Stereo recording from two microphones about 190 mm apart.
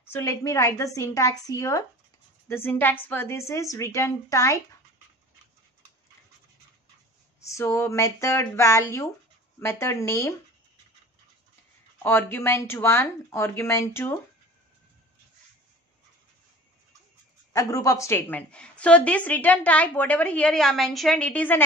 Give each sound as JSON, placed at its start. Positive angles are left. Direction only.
{"t": 0.0, "sound": "a woman's voice", "side_deg": 15}
{"t": 7.3, "sound": "a woman's voice", "side_deg": 15}
{"t": 12.0, "sound": "a woman's voice", "side_deg": 10}
{"t": 17.5, "sound": "a woman's voice", "side_deg": 15}